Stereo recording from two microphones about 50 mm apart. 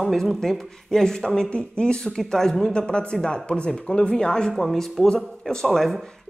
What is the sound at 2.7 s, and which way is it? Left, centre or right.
Speech, centre.